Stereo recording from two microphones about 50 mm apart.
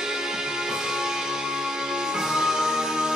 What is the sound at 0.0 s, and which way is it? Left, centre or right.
Music, centre.